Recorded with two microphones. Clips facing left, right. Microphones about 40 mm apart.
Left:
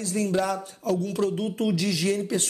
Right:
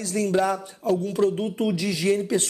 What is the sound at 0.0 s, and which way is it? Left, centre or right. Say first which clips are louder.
Speech: right 3 dB; right.